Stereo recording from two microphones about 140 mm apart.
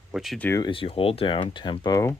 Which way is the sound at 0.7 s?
40° left (ahead or behind).